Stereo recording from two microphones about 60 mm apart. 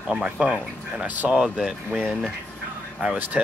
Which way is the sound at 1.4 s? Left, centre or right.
Centre.